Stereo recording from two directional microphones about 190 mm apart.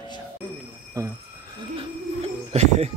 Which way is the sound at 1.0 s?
15° right (ahead or behind).